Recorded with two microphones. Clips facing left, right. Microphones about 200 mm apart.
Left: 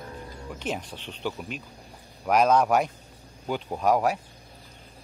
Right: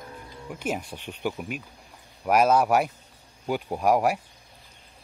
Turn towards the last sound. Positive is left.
turn(degrees=-10)  # may be behind; listen again after turning